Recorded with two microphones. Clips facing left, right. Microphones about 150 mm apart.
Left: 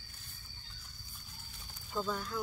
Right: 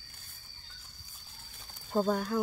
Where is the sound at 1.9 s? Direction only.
50° right (ahead or behind).